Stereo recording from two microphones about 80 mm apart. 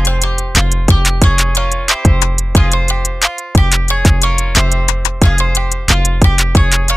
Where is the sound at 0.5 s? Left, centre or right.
Centre.